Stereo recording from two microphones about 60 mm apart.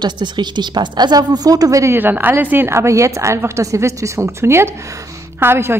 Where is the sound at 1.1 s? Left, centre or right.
Right.